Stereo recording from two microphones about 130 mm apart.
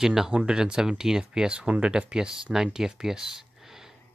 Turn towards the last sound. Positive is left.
turn(degrees=-5)  # may be behind; listen again after turning